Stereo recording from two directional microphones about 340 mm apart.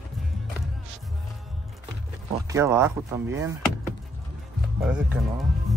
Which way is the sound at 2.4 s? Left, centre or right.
Centre.